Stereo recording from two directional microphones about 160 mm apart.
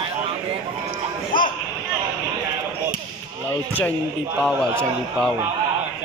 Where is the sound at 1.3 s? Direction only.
60° left (ahead or behind).